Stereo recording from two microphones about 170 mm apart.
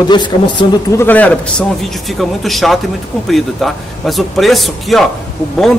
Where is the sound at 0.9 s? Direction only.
10° left (ahead or behind).